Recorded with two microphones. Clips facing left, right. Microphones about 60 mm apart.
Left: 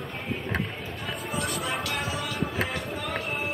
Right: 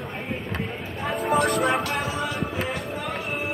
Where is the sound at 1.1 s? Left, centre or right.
Right.